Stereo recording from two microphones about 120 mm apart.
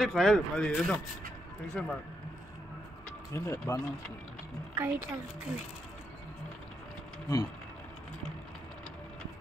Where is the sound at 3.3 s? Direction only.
25° left (ahead or behind).